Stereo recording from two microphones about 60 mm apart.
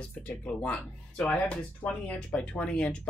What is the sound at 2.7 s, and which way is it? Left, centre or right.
Speech, centre.